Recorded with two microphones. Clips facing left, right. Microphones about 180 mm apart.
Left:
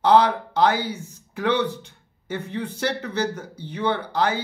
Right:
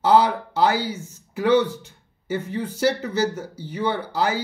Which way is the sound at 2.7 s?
10° right (ahead or behind).